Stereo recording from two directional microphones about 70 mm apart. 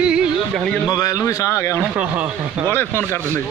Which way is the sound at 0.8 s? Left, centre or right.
Left.